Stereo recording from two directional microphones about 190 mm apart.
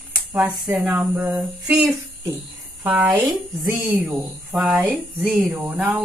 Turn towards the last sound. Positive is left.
turn(degrees=-5)  # may be behind; listen again after turning